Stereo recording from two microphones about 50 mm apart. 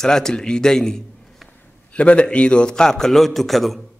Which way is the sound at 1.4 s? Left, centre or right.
Left.